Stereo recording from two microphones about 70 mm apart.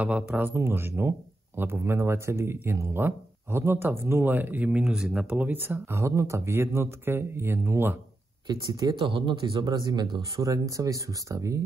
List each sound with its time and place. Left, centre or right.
0.0 s speech: right
5.2 s speech: right
8.5 s speech: right
10.4 s speech: right